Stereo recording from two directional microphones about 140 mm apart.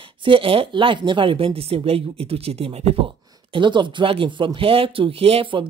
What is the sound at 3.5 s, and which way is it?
Speech, 35° right (ahead or behind).